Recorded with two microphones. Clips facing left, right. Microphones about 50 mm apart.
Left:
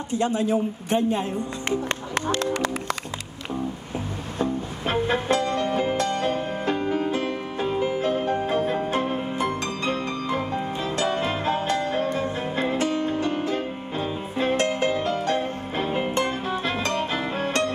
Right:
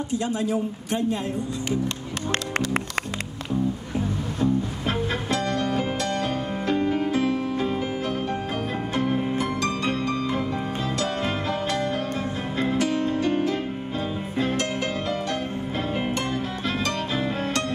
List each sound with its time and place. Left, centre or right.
0.1 s speech: left
4.4 s music: left